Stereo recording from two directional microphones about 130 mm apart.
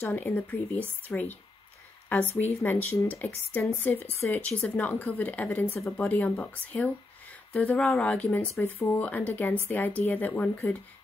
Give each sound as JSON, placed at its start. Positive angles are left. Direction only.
{"t": 0.0, "sound": "speech", "side_deg": 15}